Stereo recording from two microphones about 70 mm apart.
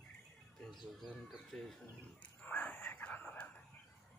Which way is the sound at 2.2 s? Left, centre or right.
Left.